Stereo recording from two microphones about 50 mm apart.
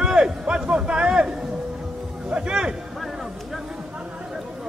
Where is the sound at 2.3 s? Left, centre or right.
Centre.